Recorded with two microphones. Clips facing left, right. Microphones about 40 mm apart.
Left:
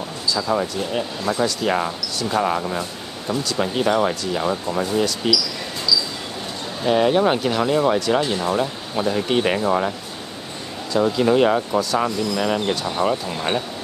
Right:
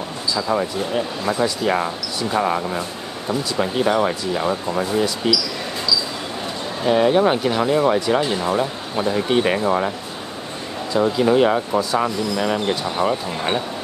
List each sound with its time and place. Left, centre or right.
0.3 s speech: centre
6.9 s speech: centre